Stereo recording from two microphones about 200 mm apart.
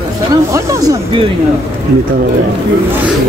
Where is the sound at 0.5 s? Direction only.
15° right (ahead or behind).